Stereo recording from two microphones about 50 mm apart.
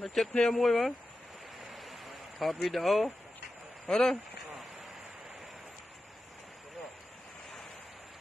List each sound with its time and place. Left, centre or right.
0.0 s speech: centre
0.3 s speech: centre
0.6 s speech: centre
1.7 s a sound: centre
3.8 s speech: centre